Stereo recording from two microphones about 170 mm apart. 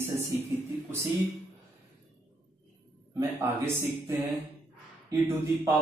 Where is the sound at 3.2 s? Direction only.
15° right (ahead or behind).